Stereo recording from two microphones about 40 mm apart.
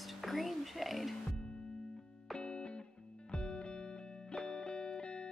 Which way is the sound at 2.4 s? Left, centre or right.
Left.